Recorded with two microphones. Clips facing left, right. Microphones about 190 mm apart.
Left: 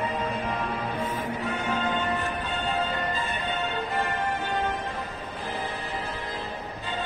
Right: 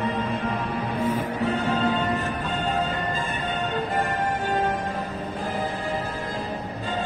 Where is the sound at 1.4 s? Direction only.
35° right (ahead or behind).